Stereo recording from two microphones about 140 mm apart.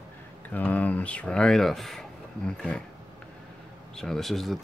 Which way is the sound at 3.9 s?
5° left (ahead or behind).